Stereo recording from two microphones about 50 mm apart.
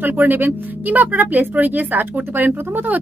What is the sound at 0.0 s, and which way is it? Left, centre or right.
A woman's voice, right.